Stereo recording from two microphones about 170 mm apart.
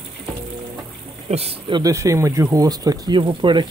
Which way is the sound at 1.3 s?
35° right (ahead or behind).